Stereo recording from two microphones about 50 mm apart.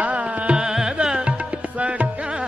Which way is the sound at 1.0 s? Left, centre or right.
Right.